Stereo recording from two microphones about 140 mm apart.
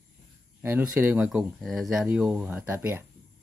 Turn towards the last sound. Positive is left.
turn(degrees=-15)  # may be behind; listen again after turning